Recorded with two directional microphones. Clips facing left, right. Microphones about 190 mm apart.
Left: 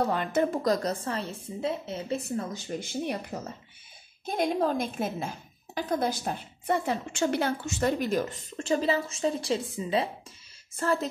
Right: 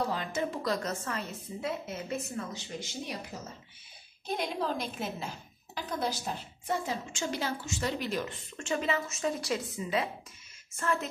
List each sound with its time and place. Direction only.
0.1 s a woman's voice: 55° left (ahead or behind); by 2.4 s 35° left (ahead or behind)
2.5 s a woman's voice: 55° left (ahead or behind); by 11.1 s 35° left (ahead or behind)